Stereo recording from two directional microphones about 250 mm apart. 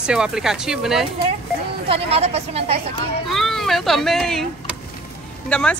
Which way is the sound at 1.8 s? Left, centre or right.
Right.